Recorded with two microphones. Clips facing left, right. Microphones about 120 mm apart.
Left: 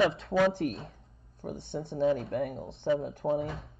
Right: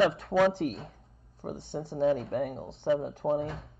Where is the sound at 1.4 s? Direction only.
60° right (ahead or behind).